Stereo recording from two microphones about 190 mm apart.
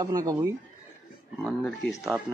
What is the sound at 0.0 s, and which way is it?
Speech, 20° right (ahead or behind).